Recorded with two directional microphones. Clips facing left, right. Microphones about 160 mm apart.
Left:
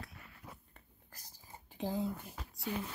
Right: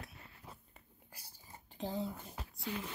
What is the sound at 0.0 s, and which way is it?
Biting, 25° right (ahead or behind).